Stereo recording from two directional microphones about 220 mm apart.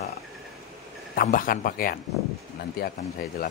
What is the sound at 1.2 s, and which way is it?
Speech, 40° left (ahead or behind).